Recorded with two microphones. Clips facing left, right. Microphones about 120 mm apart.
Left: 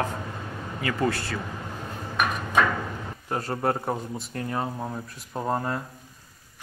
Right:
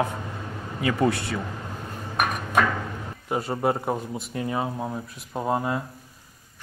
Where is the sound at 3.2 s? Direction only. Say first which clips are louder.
Right 2 dB; 5° right (ahead or behind).